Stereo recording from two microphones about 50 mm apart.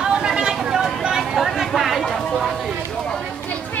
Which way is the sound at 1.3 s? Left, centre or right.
Centre.